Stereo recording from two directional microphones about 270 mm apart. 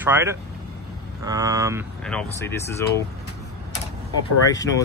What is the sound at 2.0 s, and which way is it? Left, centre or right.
Speech, centre.